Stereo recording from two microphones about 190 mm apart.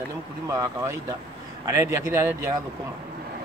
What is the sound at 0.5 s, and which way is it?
Speech, 20° right (ahead or behind).